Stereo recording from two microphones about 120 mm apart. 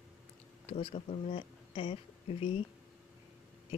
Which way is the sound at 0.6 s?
60° left (ahead or behind).